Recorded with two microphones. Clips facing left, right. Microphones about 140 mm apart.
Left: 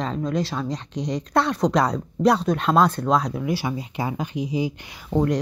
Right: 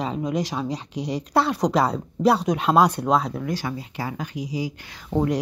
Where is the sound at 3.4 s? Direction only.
10° left (ahead or behind).